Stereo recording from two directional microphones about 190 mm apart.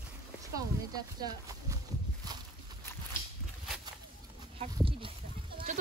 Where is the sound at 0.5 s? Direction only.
20° right (ahead or behind).